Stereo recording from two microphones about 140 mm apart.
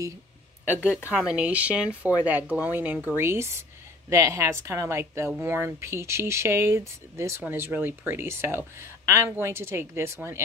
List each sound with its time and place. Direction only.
0.7 s speech: 10° right (ahead or behind)